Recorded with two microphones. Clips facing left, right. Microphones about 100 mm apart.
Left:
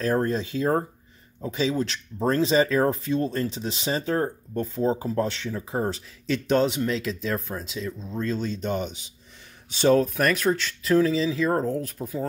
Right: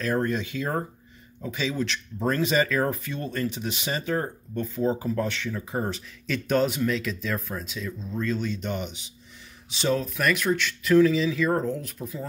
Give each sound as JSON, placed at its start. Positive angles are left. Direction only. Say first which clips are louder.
{"t": 0.0, "sound": "speech", "louder": "left 2 dB", "side_deg": 35}
{"t": 9.7, "sound": "speech", "louder": "left 6 dB", "side_deg": 50}